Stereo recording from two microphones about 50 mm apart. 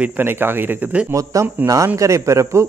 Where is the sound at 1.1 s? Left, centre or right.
Right.